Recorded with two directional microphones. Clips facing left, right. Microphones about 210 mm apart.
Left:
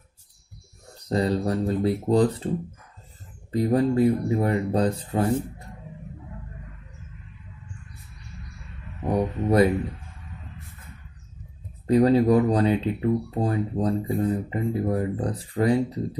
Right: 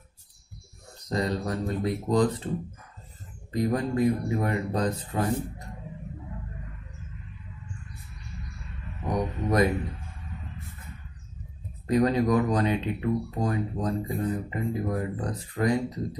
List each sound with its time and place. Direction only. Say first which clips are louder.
0.9 s speech: left 5 dB; 30° left (ahead or behind)
3.5 s speech: left 5 dB; 30° left (ahead or behind)
9.0 s speech: left 4 dB; 30° left (ahead or behind)
11.9 s speech: left 5 dB; 30° left (ahead or behind)